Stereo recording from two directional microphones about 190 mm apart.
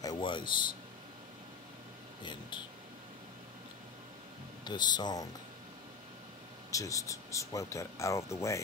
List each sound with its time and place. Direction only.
0.0 s speech: 25° left (ahead or behind)
4.6 s speech: 20° left (ahead or behind)
6.7 s speech: 15° left (ahead or behind)